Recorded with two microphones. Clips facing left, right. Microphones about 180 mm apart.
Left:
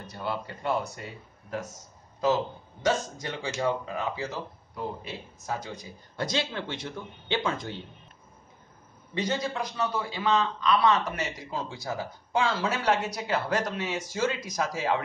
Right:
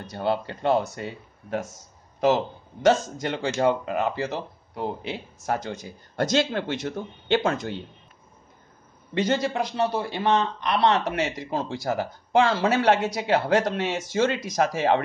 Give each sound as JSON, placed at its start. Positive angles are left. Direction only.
{"t": 0.0, "sound": "speech", "side_deg": -80}
{"t": 3.6, "sound": "speech", "side_deg": -70}
{"t": 6.8, "sound": "a man's voice", "side_deg": -45}
{"t": 7.4, "sound": "speech", "side_deg": -75}
{"t": 9.1, "sound": "a man's voice", "side_deg": -80}
{"t": 9.9, "sound": "speech", "side_deg": -65}